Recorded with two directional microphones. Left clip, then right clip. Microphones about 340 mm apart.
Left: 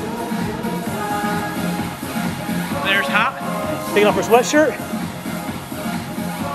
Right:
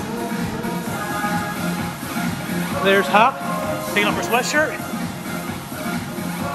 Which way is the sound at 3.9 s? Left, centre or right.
Centre.